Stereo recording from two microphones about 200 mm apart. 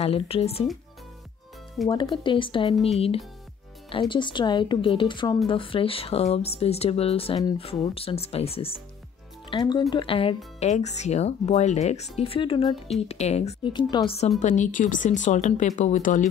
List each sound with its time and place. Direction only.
0.0 s speech: 30° left (ahead or behind)
1.9 s speech: 25° left (ahead or behind); by 16.3 s 40° left (ahead or behind)